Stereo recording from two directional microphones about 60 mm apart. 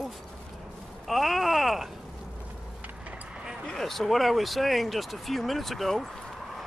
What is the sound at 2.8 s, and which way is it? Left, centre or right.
Vehicle, right.